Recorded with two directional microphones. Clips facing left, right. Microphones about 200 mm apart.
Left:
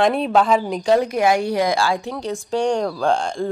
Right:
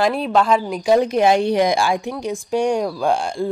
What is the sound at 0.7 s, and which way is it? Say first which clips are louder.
Speech: right 3 dB; 10° right (ahead or behind).